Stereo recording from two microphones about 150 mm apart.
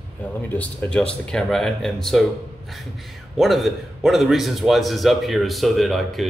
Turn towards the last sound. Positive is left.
turn(degrees=0)  # may be behind; listen again after turning